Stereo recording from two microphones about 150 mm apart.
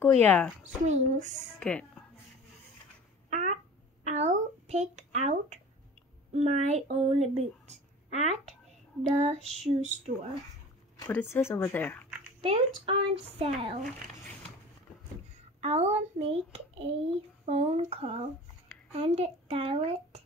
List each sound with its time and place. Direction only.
0.1 s speech: 10° left (ahead or behind)
0.8 s a child's voice: 55° right (ahead or behind)
1.6 s a sound: 5° left (ahead or behind)
3.3 s a sound: 50° right (ahead or behind)
6.3 s a child's voice: 45° right (ahead or behind)
11.1 s speech: 15° left (ahead or behind)
12.4 s speech: 40° right (ahead or behind)
15.6 s a child's voice: 45° right (ahead or behind)